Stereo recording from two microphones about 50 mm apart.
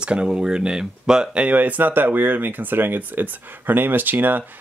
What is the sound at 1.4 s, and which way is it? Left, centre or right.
Speech, right.